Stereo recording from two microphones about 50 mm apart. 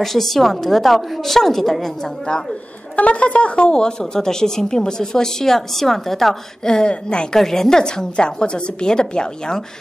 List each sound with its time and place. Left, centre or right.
0.0 s a woman's voice: centre
3.0 s speech: left
7.3 s speech: centre